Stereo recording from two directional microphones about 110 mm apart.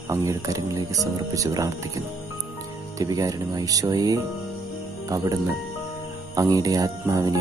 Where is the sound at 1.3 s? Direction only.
30° right (ahead or behind).